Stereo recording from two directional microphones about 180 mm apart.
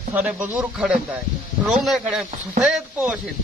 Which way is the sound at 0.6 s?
5° right (ahead or behind).